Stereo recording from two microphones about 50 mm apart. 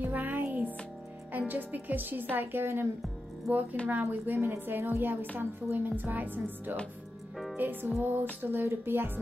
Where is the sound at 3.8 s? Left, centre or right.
Left.